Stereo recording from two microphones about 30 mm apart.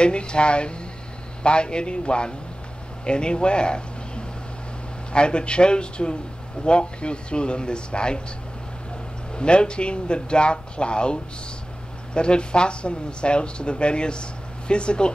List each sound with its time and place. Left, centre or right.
0.0 s speech: left
9.3 s speech: left